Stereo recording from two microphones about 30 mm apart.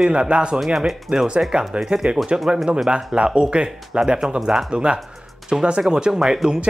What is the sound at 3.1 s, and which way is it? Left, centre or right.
Speech, right.